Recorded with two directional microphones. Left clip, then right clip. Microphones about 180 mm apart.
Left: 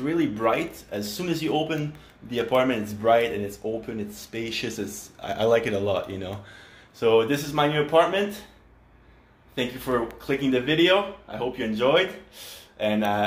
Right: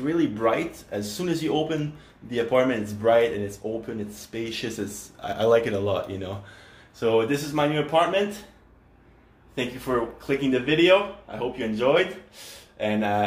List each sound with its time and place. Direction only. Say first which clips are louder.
0.0 s speech: right 1 dB; 15° left (ahead or behind)
7.0 s speech: left 2 dB; 25° left (ahead or behind)
9.6 s speech: even; 20° left (ahead or behind)